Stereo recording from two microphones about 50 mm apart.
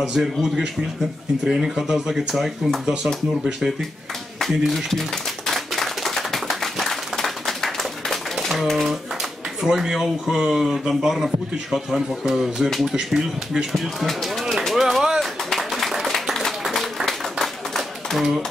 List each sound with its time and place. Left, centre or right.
0.1 s speech: centre
2.3 s speech: centre
4.4 s speech: centre
5.5 s a sound: centre
9.6 s speech: centre
12.8 s speech: centre
13.5 s speech: centre
14.8 s a sound: centre
15.1 s clapping: centre